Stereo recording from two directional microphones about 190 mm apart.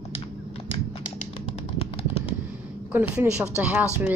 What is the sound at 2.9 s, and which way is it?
Speech, 5° right (ahead or behind).